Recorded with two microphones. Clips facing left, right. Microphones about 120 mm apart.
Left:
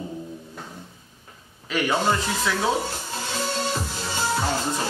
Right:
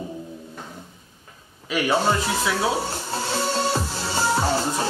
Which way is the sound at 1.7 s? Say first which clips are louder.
Right 2 dB; 10° right (ahead or behind).